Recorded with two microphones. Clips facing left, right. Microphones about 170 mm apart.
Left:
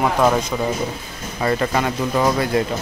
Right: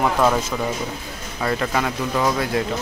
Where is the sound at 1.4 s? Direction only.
Centre (ahead or behind).